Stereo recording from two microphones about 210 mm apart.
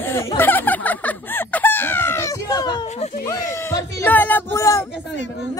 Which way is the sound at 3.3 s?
15° left (ahead or behind).